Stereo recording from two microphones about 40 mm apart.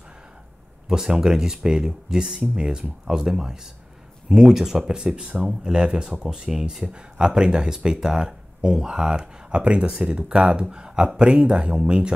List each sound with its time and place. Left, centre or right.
0.8 s speech: centre
4.9 s speech: right
5.4 s speech: centre
9.6 s speech: right
9.8 s speech: right